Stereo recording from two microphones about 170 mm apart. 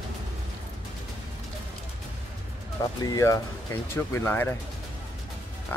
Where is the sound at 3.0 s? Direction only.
20° left (ahead or behind).